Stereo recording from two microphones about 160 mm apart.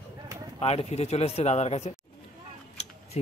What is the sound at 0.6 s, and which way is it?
Speech, 40° left (ahead or behind).